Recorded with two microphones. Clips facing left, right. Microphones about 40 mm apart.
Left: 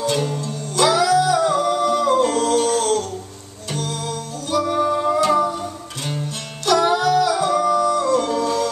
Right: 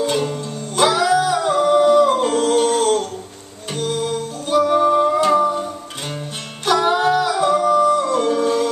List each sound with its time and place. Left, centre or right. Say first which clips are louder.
0.0 s music: right 2 dB; centre
0.7 s singing: even; right
3.7 s music: right 5 dB; right
6.6 s music: right 1 dB; right
7.2 s music: right 2 dB; centre